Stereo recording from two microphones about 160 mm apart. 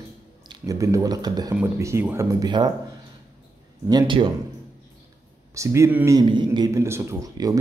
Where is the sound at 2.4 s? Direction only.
25° right (ahead or behind).